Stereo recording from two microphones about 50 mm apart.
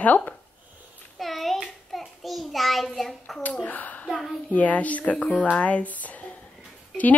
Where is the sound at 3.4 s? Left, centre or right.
Left.